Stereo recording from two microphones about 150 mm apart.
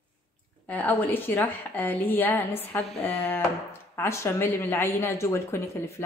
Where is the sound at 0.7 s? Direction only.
10° left (ahead or behind).